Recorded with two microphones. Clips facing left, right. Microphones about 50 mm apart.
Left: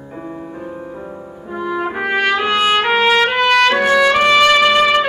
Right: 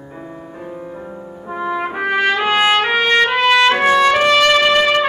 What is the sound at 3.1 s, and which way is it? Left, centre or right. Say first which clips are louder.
Trumpet: even; centre.